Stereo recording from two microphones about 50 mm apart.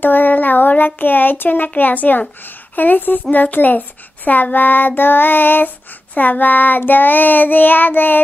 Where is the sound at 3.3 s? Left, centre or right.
Left.